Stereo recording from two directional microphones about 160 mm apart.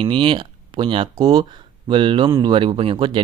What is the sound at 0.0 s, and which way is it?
Speech, 30° right (ahead or behind).